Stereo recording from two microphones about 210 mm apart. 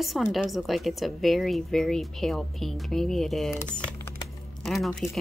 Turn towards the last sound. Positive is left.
turn(degrees=0)  # may be behind; listen again after turning